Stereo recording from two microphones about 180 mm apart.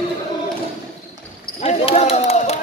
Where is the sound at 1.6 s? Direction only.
35° left (ahead or behind).